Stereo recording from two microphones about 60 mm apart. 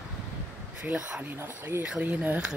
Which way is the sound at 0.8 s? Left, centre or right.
Centre.